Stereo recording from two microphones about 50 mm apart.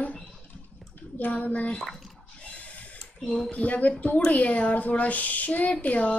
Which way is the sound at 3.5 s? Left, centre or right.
Left.